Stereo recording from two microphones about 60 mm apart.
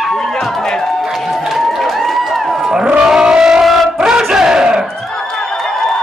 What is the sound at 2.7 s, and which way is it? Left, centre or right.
Music, centre.